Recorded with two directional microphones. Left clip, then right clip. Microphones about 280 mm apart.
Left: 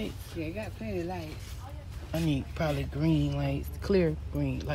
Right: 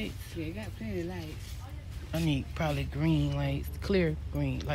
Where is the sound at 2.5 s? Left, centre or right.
Centre.